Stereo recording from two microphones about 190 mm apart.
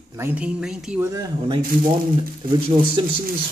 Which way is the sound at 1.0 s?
15° right (ahead or behind).